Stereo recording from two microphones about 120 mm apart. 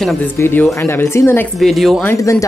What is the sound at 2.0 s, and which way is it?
Speech, 25° left (ahead or behind).